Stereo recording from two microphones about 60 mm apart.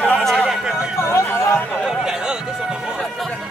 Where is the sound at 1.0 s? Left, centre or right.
Left.